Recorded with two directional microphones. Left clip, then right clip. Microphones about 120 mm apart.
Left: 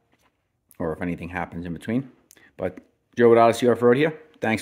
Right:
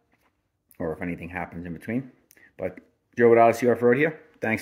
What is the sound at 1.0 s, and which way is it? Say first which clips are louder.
Speech: left 3 dB; 35° left (ahead or behind).